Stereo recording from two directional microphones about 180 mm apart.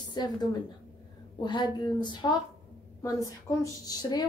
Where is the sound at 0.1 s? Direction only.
25° left (ahead or behind).